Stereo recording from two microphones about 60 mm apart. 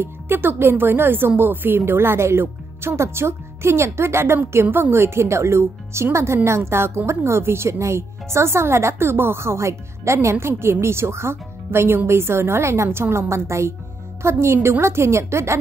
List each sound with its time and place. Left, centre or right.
0.0 s speech: right